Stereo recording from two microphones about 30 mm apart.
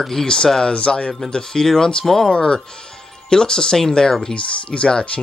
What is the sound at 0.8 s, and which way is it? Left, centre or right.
Speech, left.